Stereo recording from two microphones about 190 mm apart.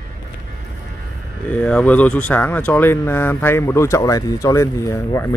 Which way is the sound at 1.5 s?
5° left (ahead or behind).